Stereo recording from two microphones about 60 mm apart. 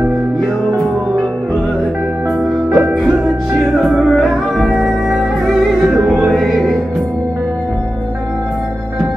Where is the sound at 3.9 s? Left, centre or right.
Centre.